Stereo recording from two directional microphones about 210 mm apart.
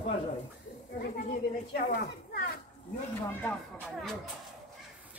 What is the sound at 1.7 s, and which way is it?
Speech, 50° left (ahead or behind).